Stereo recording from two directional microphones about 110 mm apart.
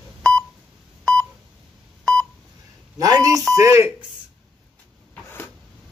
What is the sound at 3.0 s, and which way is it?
Speech, 30° right (ahead or behind).